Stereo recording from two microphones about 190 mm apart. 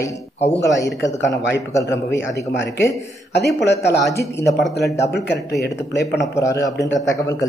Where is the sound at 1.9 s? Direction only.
70° left (ahead or behind).